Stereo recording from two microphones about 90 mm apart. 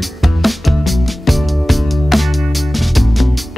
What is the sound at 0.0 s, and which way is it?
Music, centre (ahead or behind).